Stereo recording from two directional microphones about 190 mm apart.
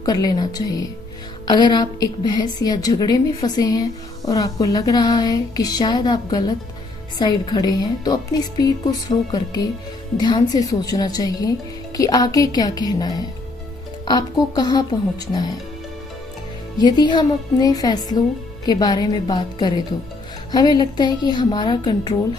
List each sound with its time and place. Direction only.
0.0 s a woman's voice: 20° left (ahead or behind)
16.7 s a woman's voice: 20° left (ahead or behind)